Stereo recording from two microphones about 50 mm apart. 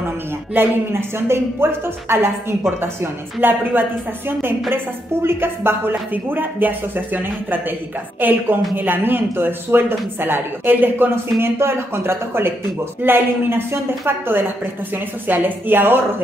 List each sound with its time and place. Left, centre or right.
0.6 s speech: right
11.1 s speech: right